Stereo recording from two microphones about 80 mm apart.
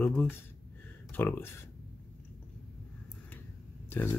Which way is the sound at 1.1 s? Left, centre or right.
Left.